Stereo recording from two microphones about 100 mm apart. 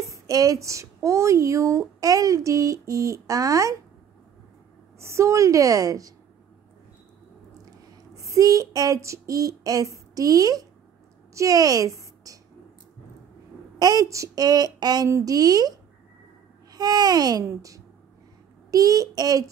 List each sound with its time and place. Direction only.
0.0 s speech: 35° right (ahead or behind)
4.9 s speech: 30° right (ahead or behind)
8.2 s a sound: 35° right (ahead or behind)
11.3 s a woman's voice: 35° right (ahead or behind)
13.7 s speech: 40° right (ahead or behind)
16.7 s speech: 40° right (ahead or behind)